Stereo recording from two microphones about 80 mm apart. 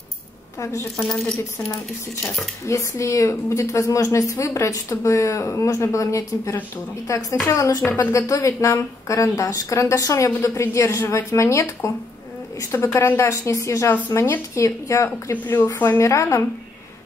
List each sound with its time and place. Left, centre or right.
0.9 s speech: centre
2.7 s a woman's voice: left
7.8 s speech: left
8.3 s a woman's voice: left